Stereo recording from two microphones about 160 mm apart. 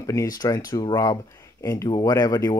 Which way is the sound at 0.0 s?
20° left (ahead or behind).